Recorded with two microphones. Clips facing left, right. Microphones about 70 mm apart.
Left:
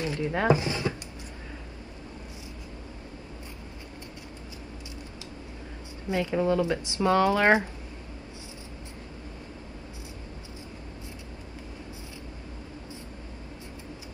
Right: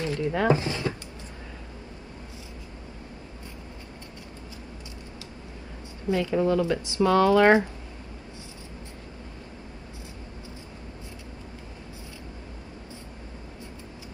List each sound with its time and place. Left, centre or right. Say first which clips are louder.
0.0 s speech: right 2 dB; left
6.0 s speech: right 2 dB; left